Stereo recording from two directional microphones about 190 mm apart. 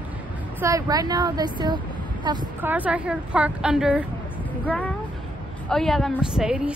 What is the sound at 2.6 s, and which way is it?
A woman's voice, 10° right (ahead or behind).